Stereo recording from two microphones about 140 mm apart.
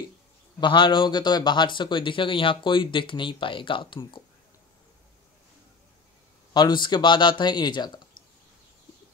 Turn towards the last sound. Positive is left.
turn(degrees=30)  # may be behind; listen again after turning